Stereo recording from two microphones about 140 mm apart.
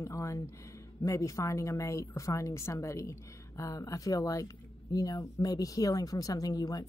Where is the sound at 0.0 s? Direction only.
20° left (ahead or behind).